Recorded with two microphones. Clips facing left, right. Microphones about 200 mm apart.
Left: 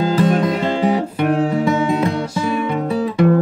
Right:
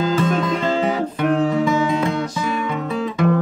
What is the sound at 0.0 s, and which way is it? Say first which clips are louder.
Music: left 3 dB; 35° left (ahead or behind).